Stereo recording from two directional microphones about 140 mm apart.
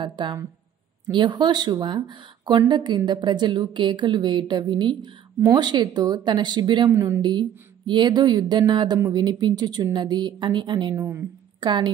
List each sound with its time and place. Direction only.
0.0 s speech: 35° right (ahead or behind)
11.0 s speech: 15° right (ahead or behind)
11.6 s speech: 35° right (ahead or behind)